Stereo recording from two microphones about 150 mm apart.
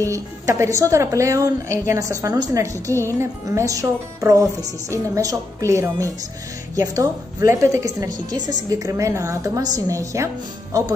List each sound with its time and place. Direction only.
0.0 s speech: 20° right (ahead or behind)
2.9 s music: 15° left (ahead or behind)
3.2 s speech: 20° right (ahead or behind)